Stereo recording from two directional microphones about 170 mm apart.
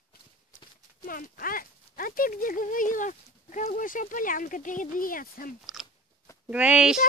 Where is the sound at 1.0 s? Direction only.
55° left (ahead or behind).